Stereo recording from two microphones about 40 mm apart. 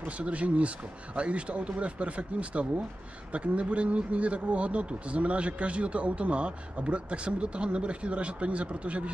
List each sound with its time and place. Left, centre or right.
0.2 s speech: right